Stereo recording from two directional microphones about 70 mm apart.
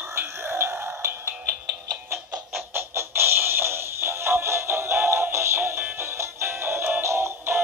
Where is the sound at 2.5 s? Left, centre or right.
Right.